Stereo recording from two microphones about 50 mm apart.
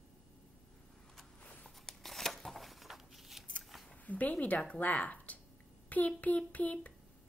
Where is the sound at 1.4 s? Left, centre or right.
Left.